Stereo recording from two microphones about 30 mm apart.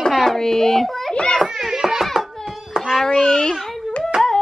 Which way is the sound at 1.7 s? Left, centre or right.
Centre.